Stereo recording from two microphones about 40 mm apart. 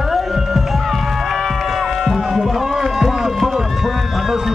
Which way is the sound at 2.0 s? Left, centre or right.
Centre.